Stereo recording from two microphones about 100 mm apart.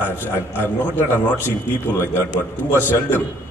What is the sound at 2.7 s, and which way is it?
Speech, 20° left (ahead or behind).